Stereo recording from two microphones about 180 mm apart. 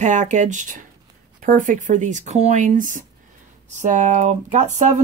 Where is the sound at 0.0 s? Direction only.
40° right (ahead or behind).